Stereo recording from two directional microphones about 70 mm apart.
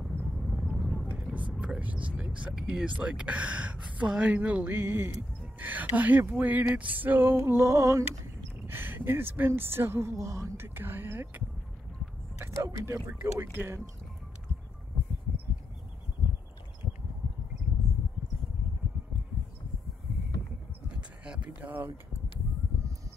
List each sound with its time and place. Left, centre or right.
0.4 s vehicle: centre
1.1 s vehicle: centre
1.5 s vehicle: centre
1.8 s a sound: centre
2.5 s speech: centre
4.4 s a sound: right
8.6 s a woman's voice: right
10.6 s a woman's voice: right
12.4 s a woman's voice: right
21.2 s a sound: centre